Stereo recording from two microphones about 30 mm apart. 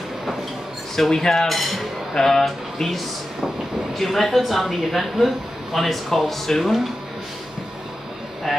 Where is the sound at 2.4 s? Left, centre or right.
Centre.